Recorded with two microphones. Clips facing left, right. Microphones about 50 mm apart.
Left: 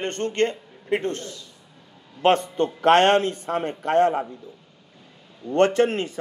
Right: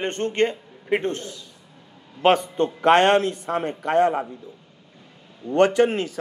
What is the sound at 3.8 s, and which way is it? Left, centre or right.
Speech, centre.